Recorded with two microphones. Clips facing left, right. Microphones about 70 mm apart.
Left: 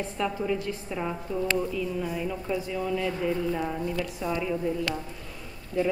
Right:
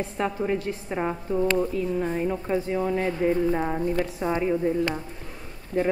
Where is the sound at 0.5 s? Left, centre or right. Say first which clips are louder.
Right 2 dB; right.